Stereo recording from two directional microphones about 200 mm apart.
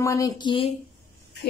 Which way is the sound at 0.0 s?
15° left (ahead or behind).